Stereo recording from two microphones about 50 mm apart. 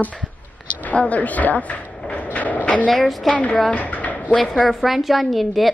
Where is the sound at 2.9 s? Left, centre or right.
Centre.